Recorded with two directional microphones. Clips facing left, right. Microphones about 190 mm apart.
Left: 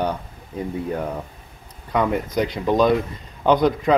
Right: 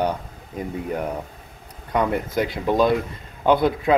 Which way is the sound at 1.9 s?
10° right (ahead or behind).